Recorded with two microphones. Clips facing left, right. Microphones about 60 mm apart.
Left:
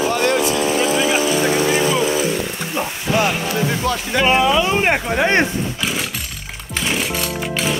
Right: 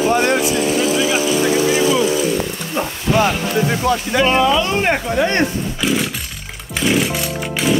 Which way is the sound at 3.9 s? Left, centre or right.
Centre.